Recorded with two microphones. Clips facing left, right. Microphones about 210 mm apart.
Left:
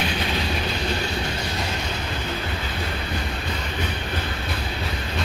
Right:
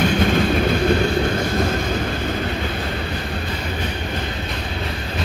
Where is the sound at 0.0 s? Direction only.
50° right (ahead or behind).